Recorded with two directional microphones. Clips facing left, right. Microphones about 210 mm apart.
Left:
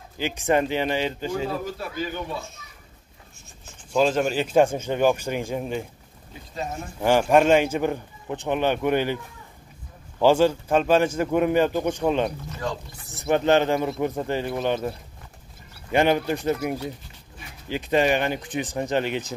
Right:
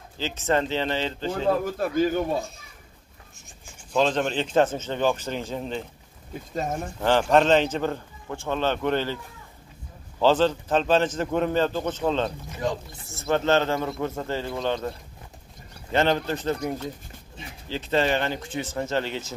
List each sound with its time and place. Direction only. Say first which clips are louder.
0.2 s a man's voice: left 2 dB; 15° left (ahead or behind)
1.6 s speech: right 7 dB; 50° right (ahead or behind)
3.9 s a man's voice: left 2 dB; 10° left (ahead or behind)
6.5 s speech: right 3 dB; 45° right (ahead or behind)
7.0 s a man's voice: left 2 dB; 10° left (ahead or behind)
12.4 s speech: right 2 dB; 20° right (ahead or behind)
13.1 s a man's voice: left 2 dB; 15° left (ahead or behind)
15.9 s a man's voice: left 2 dB; 15° left (ahead or behind)